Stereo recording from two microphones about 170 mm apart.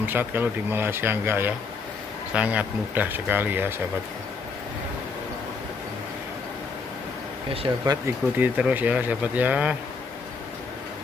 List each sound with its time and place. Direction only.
0.0 s speech: 10° right (ahead or behind)
7.6 s speech: 25° right (ahead or behind)
8.4 s speech: 10° right (ahead or behind)